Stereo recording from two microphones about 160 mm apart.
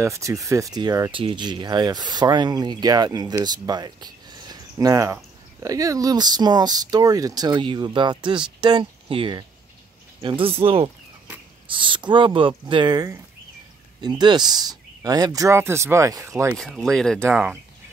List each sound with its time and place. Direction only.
0.0 s speech: 20° right (ahead or behind)
16.5 s speech: 5° left (ahead or behind)